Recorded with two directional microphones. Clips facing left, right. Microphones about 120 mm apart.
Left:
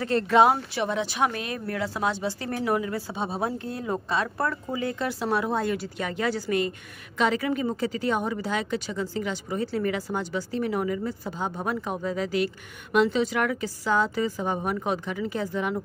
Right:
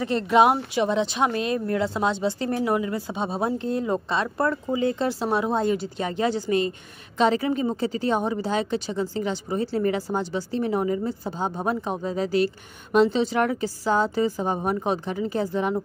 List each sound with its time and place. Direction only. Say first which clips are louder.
0.0 s a woman's voice: right 1 dB; 15° right (ahead or behind)